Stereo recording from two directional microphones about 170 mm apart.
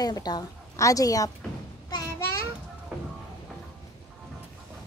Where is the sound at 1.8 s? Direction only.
20° left (ahead or behind).